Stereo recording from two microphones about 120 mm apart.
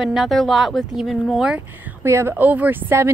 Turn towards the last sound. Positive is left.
turn(degrees=-20)  # may be behind; listen again after turning